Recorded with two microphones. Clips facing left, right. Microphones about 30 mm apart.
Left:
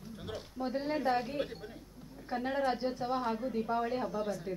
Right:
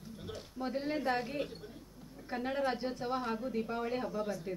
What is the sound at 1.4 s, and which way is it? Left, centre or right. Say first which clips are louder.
Speech: left 2 dB; left.